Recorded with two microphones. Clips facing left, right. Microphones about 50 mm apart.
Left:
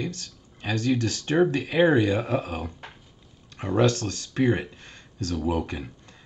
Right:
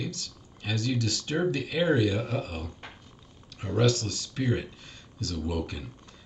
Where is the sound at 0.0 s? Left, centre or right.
Left.